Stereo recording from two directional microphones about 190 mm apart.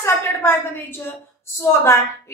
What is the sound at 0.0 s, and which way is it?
A woman's voice, 10° left (ahead or behind).